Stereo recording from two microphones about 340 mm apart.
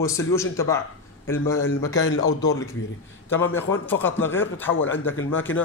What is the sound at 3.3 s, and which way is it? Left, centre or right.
Speech, centre.